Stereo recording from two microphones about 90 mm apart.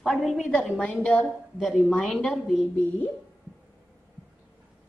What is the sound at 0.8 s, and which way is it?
Speech, 15° left (ahead or behind).